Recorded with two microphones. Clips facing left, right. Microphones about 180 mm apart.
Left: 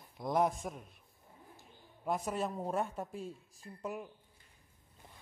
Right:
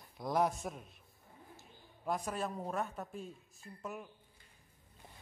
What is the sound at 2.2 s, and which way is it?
Speech, 20° left (ahead or behind).